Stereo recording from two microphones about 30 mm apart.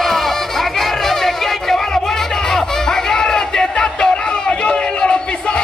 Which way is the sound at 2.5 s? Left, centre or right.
Left.